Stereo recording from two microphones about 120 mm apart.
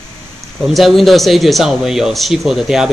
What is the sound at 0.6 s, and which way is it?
Speech, centre (ahead or behind).